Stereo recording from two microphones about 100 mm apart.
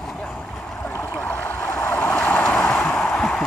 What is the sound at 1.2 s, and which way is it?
Waves, 20° left (ahead or behind).